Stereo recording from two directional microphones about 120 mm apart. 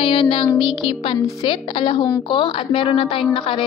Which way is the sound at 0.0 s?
45° left (ahead or behind).